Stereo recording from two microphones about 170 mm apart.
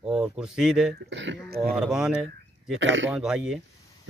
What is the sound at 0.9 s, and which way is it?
Speech, 90° right.